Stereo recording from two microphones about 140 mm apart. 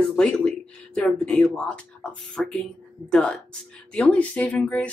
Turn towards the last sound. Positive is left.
turn(degrees=10)  # may be behind; listen again after turning